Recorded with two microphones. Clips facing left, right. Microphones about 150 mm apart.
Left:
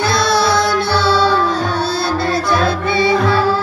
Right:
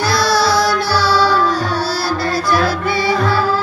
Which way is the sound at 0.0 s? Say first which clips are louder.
Even; 25° left (ahead or behind).